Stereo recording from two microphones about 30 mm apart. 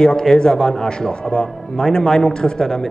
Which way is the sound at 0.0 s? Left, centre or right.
Left.